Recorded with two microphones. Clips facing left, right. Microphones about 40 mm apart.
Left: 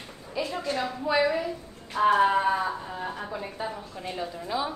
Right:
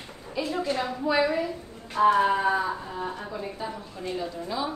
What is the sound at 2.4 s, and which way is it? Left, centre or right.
A woman's voice, centre.